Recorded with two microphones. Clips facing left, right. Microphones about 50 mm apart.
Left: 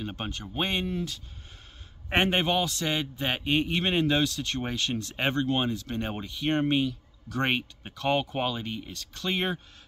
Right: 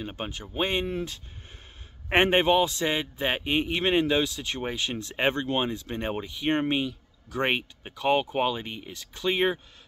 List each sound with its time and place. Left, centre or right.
0.0 s a man's voice: centre
0.8 s a man's voice: right